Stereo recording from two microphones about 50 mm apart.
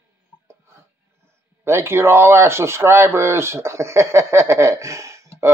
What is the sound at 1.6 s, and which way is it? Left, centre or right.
Speech, right.